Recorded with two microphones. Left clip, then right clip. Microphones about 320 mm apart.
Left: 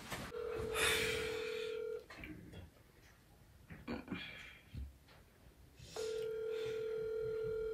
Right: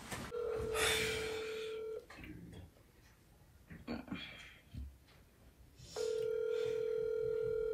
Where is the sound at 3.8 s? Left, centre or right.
Centre.